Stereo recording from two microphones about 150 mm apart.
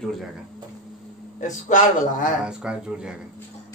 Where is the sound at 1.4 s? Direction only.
55° left (ahead or behind).